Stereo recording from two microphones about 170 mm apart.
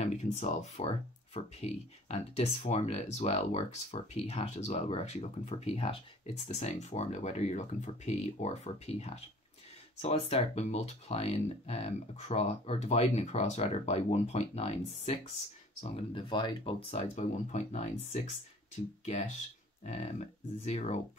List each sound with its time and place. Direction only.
0.0 s speech: 40° left (ahead or behind)
16.1 s speech: 30° left (ahead or behind)
16.9 s speech: 45° left (ahead or behind)